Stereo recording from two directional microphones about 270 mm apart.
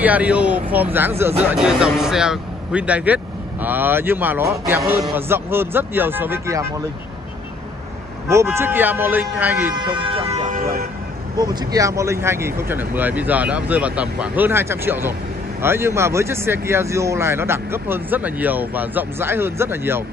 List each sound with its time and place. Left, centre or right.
0.0 s speech: centre
8.3 s speech: centre
10.1 s speech: right
11.3 s speech: centre